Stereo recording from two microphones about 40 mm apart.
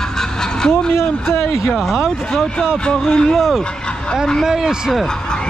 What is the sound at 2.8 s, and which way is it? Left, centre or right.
Speech, left.